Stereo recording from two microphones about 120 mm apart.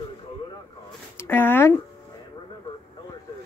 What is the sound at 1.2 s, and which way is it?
Speech, 20° left (ahead or behind).